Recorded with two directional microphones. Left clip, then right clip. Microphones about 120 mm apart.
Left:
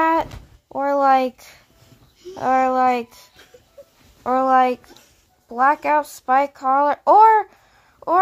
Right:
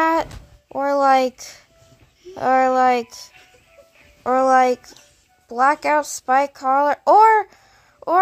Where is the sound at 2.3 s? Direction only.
20° right (ahead or behind).